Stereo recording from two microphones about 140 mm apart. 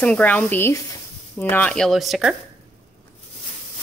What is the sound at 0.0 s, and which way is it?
A woman's voice, 10° left (ahead or behind).